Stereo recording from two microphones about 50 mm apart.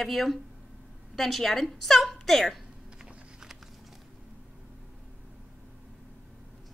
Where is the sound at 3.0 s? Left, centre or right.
Centre.